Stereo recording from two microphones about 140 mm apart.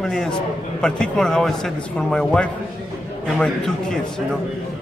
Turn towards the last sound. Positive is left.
turn(degrees=5)  # may be behind; listen again after turning